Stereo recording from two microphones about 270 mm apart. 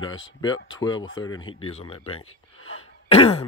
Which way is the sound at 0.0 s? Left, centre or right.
Left.